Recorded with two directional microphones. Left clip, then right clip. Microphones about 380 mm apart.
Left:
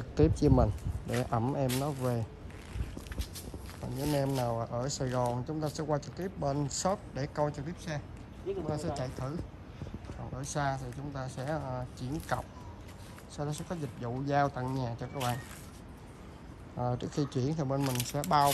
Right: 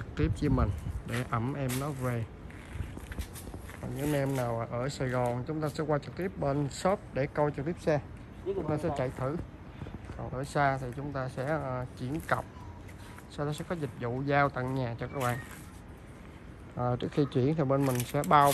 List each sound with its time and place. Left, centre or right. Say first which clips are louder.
0.1 s speech: left 5 dB; centre
3.8 s speech: right 1 dB; centre
7.5 s speech: right 10 dB; left
8.7 s speech: right 4 dB; centre
10.5 s speech: right 5 dB; centre
16.7 s speech: right 4 dB; centre